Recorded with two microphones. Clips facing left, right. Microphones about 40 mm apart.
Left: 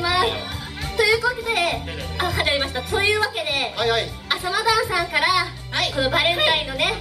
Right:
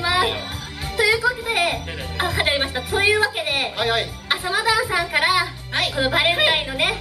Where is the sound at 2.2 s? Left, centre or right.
Centre.